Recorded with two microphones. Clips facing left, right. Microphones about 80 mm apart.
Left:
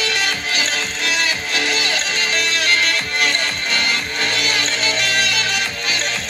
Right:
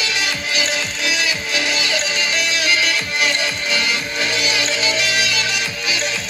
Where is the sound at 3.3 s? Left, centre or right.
Left.